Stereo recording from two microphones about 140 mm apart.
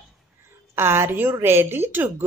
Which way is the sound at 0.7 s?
15° right (ahead or behind).